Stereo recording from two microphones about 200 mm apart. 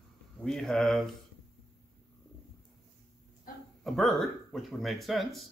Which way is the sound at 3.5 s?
45° left (ahead or behind).